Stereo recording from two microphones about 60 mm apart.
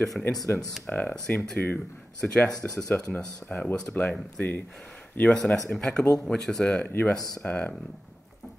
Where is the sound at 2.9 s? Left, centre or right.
Left.